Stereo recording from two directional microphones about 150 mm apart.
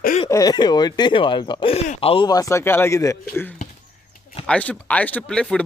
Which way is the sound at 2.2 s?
25° left (ahead or behind).